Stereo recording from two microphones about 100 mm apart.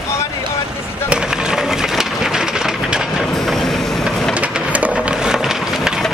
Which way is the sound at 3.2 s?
5° left (ahead or behind).